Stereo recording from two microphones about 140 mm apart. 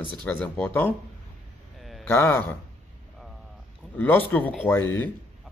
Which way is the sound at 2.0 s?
15° left (ahead or behind).